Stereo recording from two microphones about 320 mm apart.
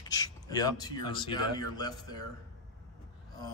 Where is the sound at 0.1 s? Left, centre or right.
Centre.